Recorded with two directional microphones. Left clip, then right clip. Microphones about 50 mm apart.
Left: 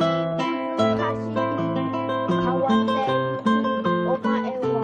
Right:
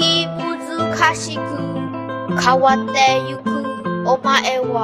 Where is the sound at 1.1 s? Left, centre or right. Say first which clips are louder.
Right 3 dB; centre.